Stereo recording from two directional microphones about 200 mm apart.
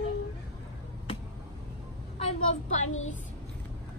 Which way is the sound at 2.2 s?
35° left (ahead or behind).